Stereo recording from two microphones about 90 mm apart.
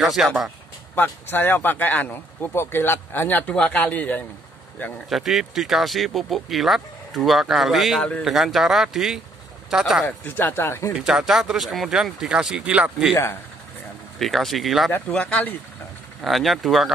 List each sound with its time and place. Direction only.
0.0 s speech: 5° right (ahead or behind)
0.9 s speech: 20° left (ahead or behind)
5.1 s speech: centre (ahead or behind)
10.0 s speech: 20° left (ahead or behind)
10.9 s speech: 10° right (ahead or behind)
14.1 s speech: centre (ahead or behind)
15.0 s speech: 10° left (ahead or behind)
16.2 s speech: centre (ahead or behind)